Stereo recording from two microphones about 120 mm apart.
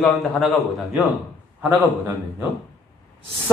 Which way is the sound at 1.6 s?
15° right (ahead or behind).